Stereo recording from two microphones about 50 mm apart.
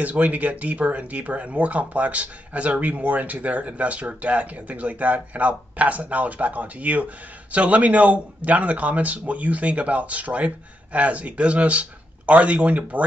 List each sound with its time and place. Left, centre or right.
0.0 s speech: right